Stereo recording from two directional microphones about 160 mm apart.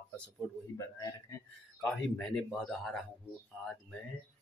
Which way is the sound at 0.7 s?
20° left (ahead or behind).